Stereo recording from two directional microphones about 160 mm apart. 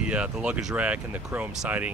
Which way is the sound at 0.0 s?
5° right (ahead or behind).